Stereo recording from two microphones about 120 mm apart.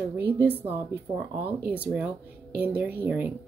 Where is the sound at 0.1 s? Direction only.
15° right (ahead or behind).